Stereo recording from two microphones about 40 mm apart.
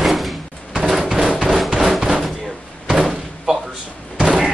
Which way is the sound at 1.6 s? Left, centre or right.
Centre.